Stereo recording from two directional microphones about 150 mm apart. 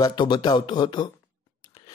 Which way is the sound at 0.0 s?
30° left (ahead or behind).